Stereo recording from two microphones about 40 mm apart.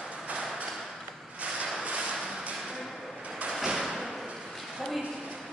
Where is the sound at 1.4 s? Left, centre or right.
Right.